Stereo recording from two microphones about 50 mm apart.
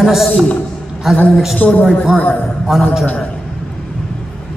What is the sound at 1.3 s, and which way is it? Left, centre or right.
Speech, centre.